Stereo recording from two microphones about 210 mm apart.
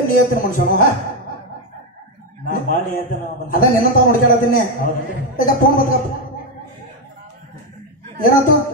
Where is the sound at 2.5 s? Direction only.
40° left (ahead or behind).